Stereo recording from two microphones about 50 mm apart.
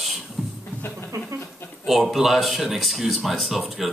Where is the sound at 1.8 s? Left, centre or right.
Centre.